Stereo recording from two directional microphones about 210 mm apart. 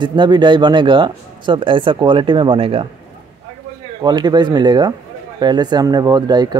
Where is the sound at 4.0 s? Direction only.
20° right (ahead or behind).